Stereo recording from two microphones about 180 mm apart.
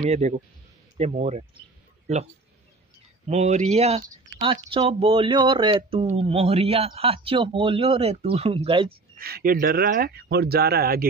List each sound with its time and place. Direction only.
0.0 s speech: 40° right (ahead or behind)
3.3 s speech: 40° right (ahead or behind)
9.1 s speech: 55° right (ahead or behind)